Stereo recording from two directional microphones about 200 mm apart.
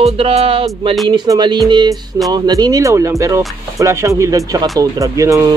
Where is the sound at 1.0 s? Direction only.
20° right (ahead or behind).